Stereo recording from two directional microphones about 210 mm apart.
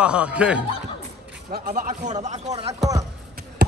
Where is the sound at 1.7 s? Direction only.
35° right (ahead or behind).